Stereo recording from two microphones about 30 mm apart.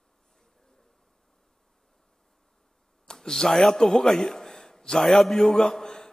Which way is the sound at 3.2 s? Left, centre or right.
Centre.